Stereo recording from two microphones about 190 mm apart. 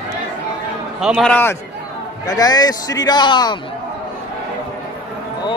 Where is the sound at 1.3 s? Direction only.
10° left (ahead or behind).